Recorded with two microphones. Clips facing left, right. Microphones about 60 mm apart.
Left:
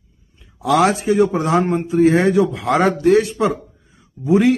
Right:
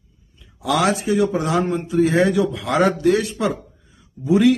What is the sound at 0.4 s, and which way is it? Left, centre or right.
A man's voice, left.